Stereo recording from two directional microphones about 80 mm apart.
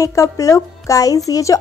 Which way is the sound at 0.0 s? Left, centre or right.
Left.